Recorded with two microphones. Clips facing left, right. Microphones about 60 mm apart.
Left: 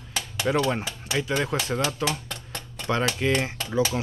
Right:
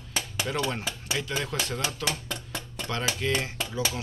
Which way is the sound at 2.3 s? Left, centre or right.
Centre.